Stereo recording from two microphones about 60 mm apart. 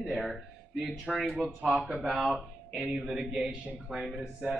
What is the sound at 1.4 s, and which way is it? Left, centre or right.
Speech, centre.